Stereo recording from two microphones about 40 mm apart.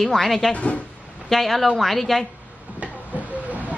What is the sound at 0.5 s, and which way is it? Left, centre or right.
Speech, left.